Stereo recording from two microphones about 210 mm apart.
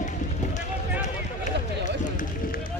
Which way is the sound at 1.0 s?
35° left (ahead or behind).